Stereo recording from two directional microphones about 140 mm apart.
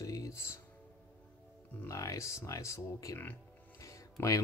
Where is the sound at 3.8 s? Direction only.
25° left (ahead or behind).